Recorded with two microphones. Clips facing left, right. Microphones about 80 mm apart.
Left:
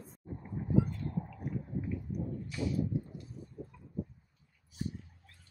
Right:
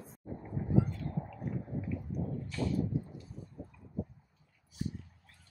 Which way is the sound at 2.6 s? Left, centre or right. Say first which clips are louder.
Right 1 dB; centre.